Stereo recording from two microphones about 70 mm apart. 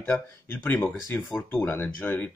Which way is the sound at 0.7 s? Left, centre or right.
Left.